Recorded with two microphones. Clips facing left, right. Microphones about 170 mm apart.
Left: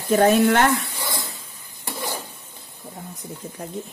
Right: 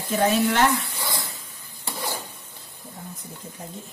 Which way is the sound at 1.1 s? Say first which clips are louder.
Left 1 dB; 20° left (ahead or behind).